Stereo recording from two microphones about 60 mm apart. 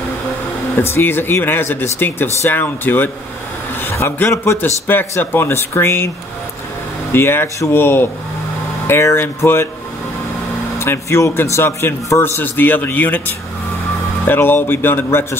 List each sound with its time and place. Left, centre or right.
0.7 s speech: left
4.6 s speech: left
10.8 s speech: left
12.2 s speech: left
14.2 s speech: left